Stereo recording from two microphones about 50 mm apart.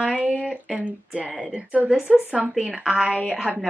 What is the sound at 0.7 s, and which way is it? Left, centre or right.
Speech, right.